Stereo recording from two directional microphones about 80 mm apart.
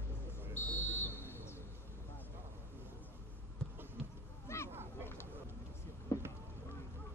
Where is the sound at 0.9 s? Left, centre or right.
Left.